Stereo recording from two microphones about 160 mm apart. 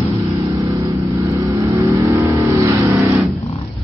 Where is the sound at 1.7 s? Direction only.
20° right (ahead or behind).